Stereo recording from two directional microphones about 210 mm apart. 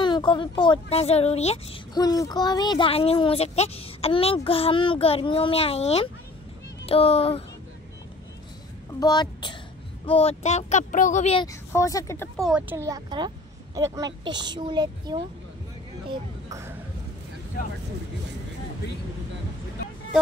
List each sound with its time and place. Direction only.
0.0 s speech: 20° left (ahead or behind)
2.0 s speech: 15° left (ahead or behind)
9.0 s a woman's voice: 20° left (ahead or behind)
11.4 s speech: 15° left (ahead or behind)
12.4 s speech: 5° right (ahead or behind)